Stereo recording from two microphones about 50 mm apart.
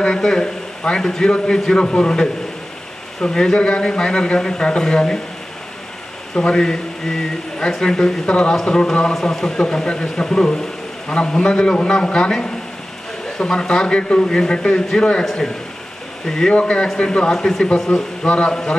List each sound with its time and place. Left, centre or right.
0.0 s a man's voice: centre
6.3 s a man's voice: centre
16.5 s a man's voice: left
18.2 s speech: left